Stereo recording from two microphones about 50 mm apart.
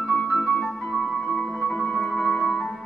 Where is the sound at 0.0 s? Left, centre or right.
Centre.